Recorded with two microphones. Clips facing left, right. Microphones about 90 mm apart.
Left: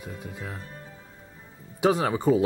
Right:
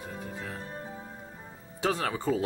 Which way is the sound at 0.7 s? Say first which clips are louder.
Right 5 dB; 35° right (ahead or behind).